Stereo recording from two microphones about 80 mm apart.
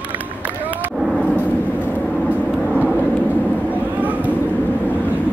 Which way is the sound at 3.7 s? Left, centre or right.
Centre.